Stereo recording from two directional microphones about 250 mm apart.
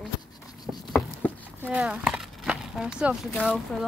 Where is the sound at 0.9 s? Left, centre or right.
Centre.